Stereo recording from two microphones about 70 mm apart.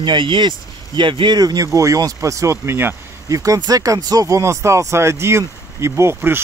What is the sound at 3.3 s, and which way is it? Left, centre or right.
Speech, right.